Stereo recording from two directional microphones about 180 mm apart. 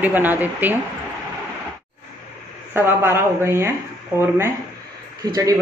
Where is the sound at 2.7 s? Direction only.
15° right (ahead or behind).